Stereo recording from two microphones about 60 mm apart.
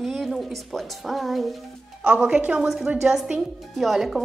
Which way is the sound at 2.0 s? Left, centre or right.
Right.